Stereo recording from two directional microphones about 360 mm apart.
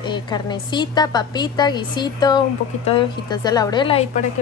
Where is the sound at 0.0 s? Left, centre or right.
Centre.